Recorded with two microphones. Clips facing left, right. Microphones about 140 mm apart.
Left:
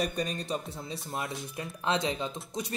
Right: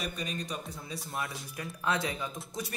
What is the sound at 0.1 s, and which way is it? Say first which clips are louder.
A man's voice: left 5 dB; 40° left (ahead or behind).